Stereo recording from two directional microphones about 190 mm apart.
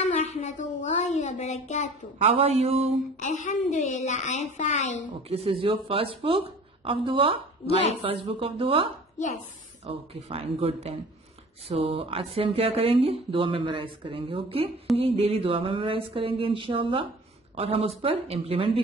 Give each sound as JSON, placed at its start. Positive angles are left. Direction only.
{"t": 0.0, "sound": "a sound", "side_deg": 35}
{"t": 2.2, "sound": "speech", "side_deg": -35}
{"t": 3.2, "sound": "a woman's voice", "side_deg": 40}
{"t": 5.3, "sound": "speech", "side_deg": -30}